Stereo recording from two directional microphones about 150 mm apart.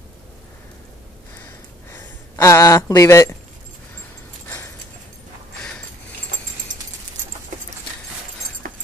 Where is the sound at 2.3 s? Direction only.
20° left (ahead or behind).